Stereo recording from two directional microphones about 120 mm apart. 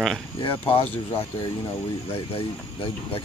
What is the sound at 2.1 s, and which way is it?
Speech, 50° left (ahead or behind).